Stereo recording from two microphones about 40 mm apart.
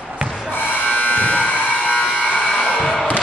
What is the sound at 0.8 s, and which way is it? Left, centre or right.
Electric shaver, left.